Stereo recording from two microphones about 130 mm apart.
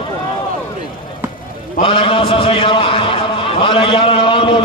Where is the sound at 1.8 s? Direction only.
45° left (ahead or behind).